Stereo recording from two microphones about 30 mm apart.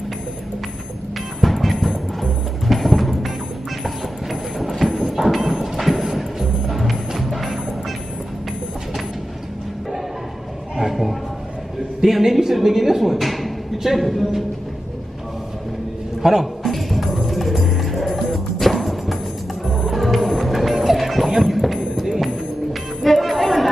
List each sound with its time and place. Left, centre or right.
1.4 s music: centre
2.7 s a sound: centre
6.0 s music: centre
6.7 s music: centre
10.8 s a sound: centre
12.0 s a woman's voice: centre
16.2 s a man's voice: centre
16.6 s music: centre